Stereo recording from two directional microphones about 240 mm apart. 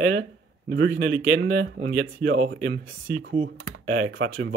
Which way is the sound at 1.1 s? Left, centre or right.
Right.